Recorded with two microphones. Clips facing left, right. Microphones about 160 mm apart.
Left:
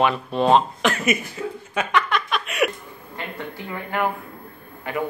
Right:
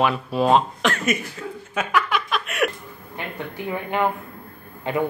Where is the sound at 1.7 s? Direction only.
5° right (ahead or behind).